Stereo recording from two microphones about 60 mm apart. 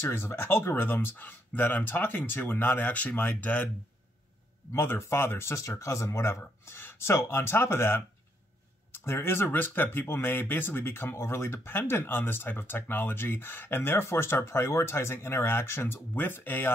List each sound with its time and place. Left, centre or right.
0.0 s speech: left
4.7 s speech: left
6.6 s speech: left
9.0 s speech: left